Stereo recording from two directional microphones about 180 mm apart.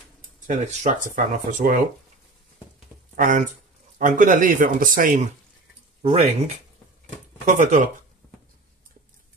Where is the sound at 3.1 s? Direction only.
45° right (ahead or behind).